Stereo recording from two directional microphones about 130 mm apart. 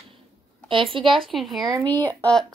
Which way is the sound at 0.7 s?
40° right (ahead or behind).